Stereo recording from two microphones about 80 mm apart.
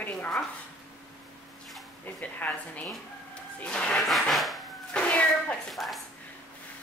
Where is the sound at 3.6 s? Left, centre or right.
Centre.